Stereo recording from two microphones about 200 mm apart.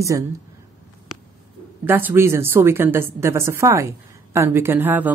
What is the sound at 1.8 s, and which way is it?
Speech, 10° right (ahead or behind).